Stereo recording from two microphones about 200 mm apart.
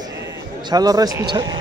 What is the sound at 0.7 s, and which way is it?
Speech, 20° right (ahead or behind).